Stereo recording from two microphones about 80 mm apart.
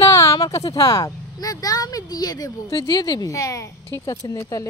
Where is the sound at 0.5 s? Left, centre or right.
Left.